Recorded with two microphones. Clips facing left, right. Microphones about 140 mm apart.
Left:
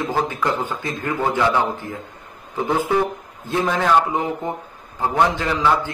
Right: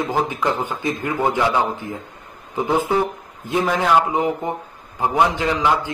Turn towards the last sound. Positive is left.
turn(degrees=-15)  # may be behind; listen again after turning